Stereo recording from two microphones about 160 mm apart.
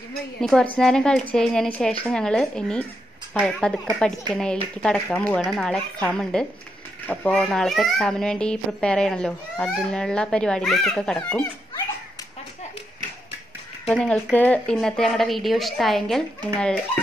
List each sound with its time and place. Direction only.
0.4 s a child's voice: 5° left (ahead or behind)
13.8 s a child's voice: 5° left (ahead or behind)